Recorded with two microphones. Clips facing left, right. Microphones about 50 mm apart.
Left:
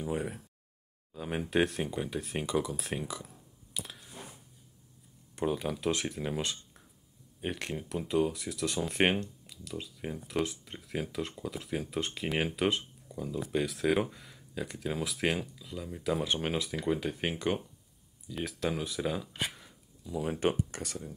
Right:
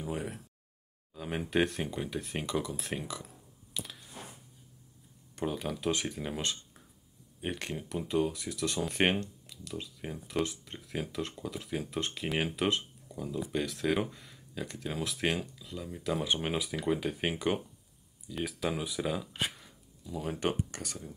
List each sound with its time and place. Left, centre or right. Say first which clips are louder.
0.0 s speech: left 3 dB; centre
5.4 s speech: left 2 dB; centre
20.7 s speech: left 2 dB; centre